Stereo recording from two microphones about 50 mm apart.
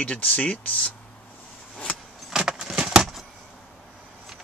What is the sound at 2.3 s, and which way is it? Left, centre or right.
Keys jangling, centre.